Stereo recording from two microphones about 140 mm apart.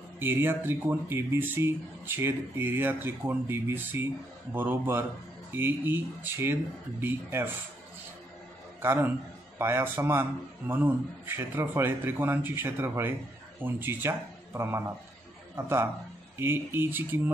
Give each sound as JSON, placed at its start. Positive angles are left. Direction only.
{"t": 0.2, "sound": "speech", "side_deg": -15}
{"t": 8.8, "sound": "a man's voice", "side_deg": -15}